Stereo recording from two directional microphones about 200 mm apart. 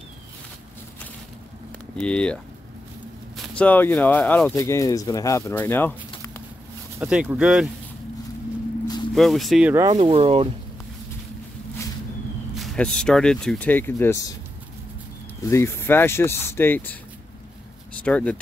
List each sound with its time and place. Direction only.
2.0 s speech: 5° left (ahead or behind)
3.3 s speech: 5° left (ahead or behind)
7.0 s speech: 5° right (ahead or behind)
9.1 s speech: centre (ahead or behind)
9.8 s speech: 25° right (ahead or behind)
12.5 s speech: centre (ahead or behind)
15.4 s speech: 15° left (ahead or behind)
18.0 s speech: 5° left (ahead or behind)